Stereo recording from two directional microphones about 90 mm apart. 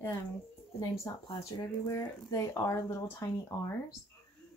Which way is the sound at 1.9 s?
35° left (ahead or behind).